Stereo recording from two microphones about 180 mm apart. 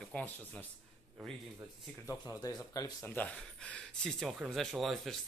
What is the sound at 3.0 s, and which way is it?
Speech, 10° left (ahead or behind).